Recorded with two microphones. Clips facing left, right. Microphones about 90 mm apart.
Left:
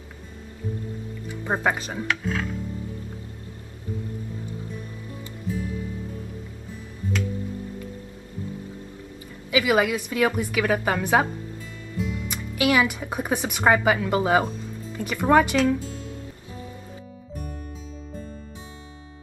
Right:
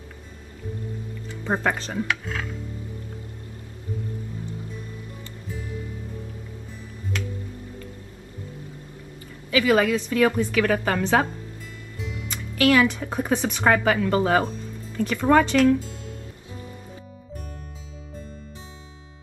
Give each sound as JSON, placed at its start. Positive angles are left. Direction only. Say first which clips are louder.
{"t": 1.4, "sound": "a woman's voice", "louder": "even", "side_deg": 10}
{"t": 9.5, "sound": "a woman's voice", "louder": "right 1 dB", "side_deg": 10}